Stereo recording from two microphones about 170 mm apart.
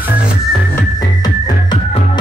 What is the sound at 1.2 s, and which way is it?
Music, 25° left (ahead or behind).